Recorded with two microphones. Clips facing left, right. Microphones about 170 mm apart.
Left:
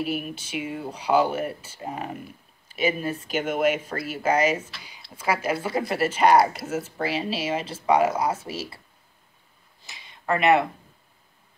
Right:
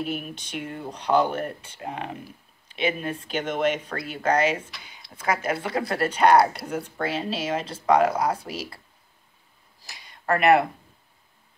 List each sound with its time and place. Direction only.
0.0 s speech: 5° left (ahead or behind)
9.8 s speech: centre (ahead or behind)